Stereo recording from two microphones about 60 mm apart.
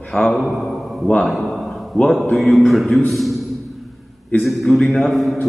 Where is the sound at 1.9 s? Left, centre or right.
Centre.